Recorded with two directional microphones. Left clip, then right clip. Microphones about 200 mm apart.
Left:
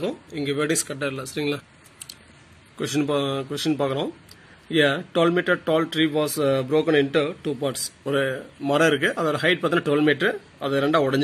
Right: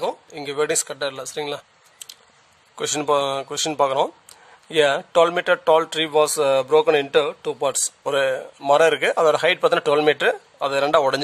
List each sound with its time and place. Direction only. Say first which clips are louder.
0.0 s speech: right 2 dB; 55° right (ahead or behind)